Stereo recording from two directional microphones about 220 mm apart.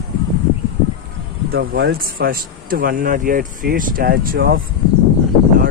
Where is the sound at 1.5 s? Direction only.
45° right (ahead or behind).